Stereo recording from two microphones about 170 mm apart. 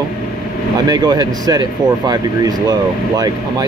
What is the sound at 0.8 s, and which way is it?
Speech, 25° right (ahead or behind).